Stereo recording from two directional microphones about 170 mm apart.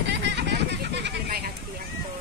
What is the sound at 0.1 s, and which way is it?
Vehicle, 80° right.